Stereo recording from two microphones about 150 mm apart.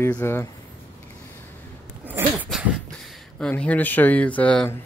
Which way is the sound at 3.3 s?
5° left (ahead or behind).